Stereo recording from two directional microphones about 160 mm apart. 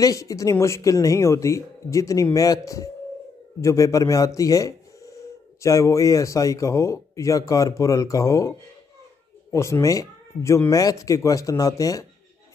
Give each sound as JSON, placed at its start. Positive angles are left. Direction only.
{"t": 0.0, "sound": "speech", "side_deg": 20}